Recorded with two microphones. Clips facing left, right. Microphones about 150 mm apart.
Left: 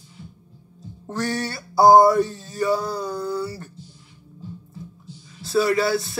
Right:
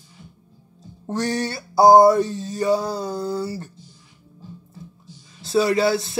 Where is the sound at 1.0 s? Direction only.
20° right (ahead or behind).